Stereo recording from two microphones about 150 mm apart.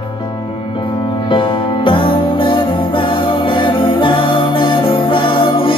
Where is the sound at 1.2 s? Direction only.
35° left (ahead or behind).